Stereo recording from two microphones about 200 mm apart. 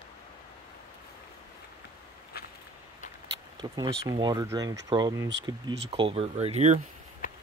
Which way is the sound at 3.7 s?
20° right (ahead or behind).